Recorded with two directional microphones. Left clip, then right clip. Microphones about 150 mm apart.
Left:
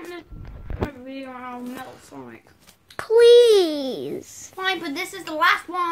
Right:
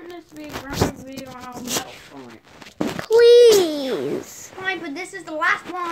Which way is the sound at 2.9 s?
10° left (ahead or behind).